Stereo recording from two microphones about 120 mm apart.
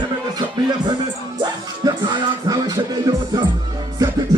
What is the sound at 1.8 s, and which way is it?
Music, 35° right (ahead or behind).